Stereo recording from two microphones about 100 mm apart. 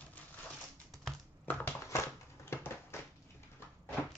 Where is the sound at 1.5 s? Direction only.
15° left (ahead or behind).